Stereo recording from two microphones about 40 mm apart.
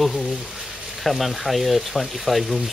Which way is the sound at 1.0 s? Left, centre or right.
Centre.